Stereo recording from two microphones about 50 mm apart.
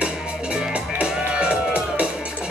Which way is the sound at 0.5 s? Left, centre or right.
Right.